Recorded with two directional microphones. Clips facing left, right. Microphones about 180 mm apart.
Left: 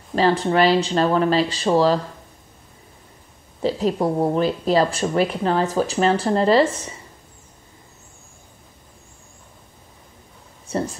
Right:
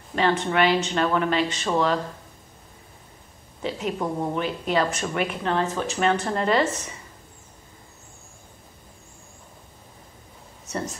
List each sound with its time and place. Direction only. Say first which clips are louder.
0.1 s speech: left 4 dB; 35° left (ahead or behind)
3.6 s speech: left 7 dB; 35° left (ahead or behind)